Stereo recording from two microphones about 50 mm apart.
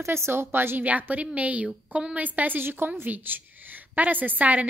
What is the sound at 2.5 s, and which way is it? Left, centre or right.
Speech, right.